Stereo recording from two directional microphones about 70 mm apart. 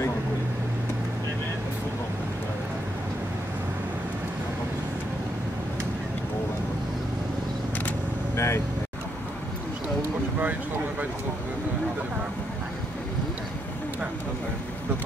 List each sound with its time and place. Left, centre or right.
8.4 s vehicle: left